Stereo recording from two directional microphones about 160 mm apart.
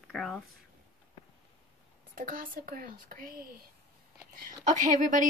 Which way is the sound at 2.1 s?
60° right (ahead or behind).